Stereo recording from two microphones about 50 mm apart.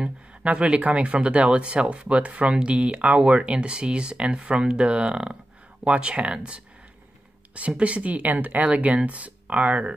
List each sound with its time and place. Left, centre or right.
0.0 s speech: right
8.6 s speech: right